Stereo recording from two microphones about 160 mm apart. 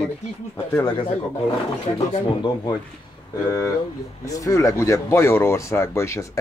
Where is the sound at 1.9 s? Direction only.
35° left (ahead or behind).